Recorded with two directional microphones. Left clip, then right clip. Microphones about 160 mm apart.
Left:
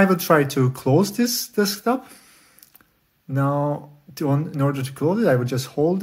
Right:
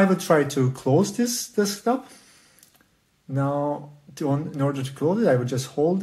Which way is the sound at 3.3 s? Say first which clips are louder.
Left 2 dB; 30° left (ahead or behind).